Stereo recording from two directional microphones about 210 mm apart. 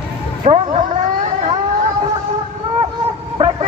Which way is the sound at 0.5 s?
30° right (ahead or behind).